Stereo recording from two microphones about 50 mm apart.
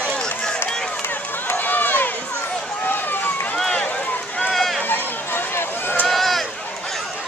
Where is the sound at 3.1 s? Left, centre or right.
Left.